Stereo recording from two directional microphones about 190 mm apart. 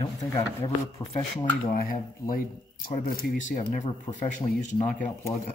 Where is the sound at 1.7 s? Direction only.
50° left (ahead or behind).